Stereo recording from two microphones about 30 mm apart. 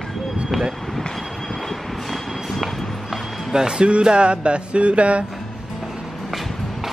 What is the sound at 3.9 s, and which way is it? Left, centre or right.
Music, right.